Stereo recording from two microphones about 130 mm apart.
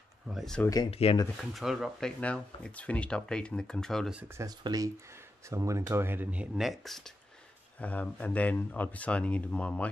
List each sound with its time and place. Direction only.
0.3 s speech: centre (ahead or behind)
0.8 s speech: 50° left (ahead or behind)
1.3 s speech: centre (ahead or behind)
4.4 s speech: 30° right (ahead or behind); by 7.0 s centre (ahead or behind)
7.8 s speech: 10° left (ahead or behind)